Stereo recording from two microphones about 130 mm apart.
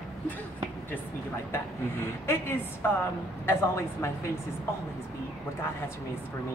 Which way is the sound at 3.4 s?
20° left (ahead or behind).